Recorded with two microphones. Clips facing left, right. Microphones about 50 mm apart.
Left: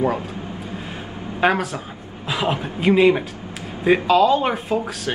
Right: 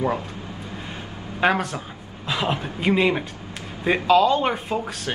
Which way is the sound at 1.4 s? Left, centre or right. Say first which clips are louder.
Left 2 dB; centre.